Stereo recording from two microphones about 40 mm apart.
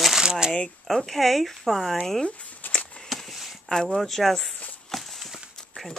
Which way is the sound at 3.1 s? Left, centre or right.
Centre.